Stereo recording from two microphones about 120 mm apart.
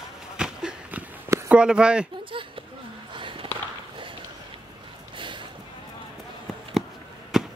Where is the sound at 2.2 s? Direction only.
45° right (ahead or behind).